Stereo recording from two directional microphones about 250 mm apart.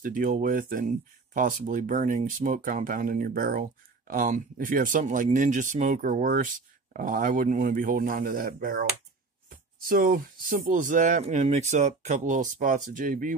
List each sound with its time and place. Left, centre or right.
0.0 s speech: right
9.8 s speech: right